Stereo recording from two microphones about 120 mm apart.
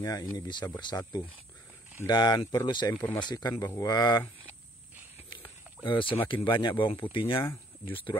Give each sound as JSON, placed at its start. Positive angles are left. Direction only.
{"t": 0.0, "sound": "speech", "side_deg": 30}
{"t": 2.9, "sound": "speech", "side_deg": 15}
{"t": 3.2, "sound": "speech", "side_deg": 40}
{"t": 3.5, "sound": "speech", "side_deg": 25}
{"t": 5.9, "sound": "speech", "side_deg": 45}